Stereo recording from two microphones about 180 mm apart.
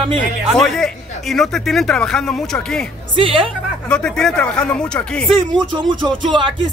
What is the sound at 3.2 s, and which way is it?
Speech, 30° right (ahead or behind).